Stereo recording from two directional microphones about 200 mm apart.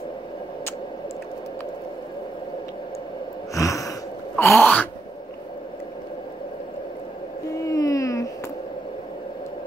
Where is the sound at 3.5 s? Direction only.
15° left (ahead or behind).